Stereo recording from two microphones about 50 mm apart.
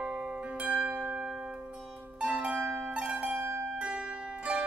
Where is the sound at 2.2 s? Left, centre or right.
Right.